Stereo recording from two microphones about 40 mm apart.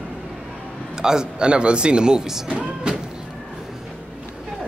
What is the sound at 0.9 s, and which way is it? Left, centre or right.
Speech, centre.